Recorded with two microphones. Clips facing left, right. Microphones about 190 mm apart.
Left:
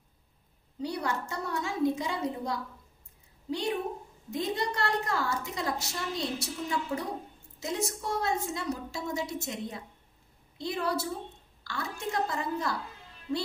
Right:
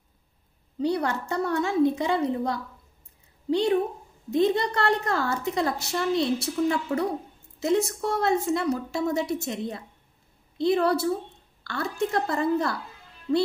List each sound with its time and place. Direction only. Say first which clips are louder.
0.8 s a woman's voice: right 7 dB; 65° right (ahead or behind)